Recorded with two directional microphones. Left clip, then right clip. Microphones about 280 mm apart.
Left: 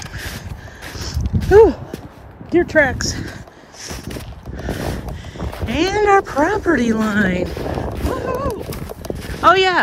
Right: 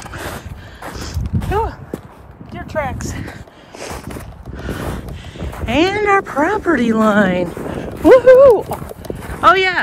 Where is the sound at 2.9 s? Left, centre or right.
Centre.